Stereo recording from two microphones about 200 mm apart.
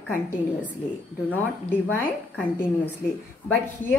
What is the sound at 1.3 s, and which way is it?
A woman's voice, 10° left (ahead or behind).